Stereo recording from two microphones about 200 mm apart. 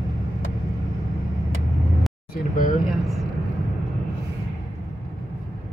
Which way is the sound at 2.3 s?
40° left (ahead or behind).